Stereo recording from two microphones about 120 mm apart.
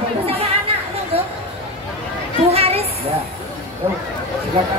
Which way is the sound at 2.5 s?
55° right (ahead or behind).